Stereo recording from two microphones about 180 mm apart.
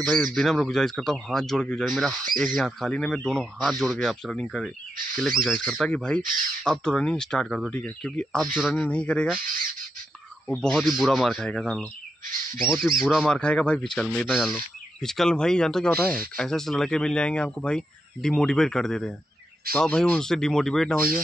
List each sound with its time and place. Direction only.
0.0 s speech: centre (ahead or behind)
10.5 s speech: 5° left (ahead or behind)